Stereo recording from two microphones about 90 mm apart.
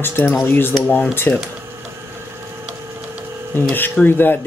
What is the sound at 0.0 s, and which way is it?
Speech, 25° left (ahead or behind).